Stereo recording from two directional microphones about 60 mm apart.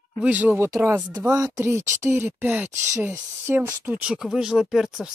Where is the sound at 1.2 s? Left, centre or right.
Right.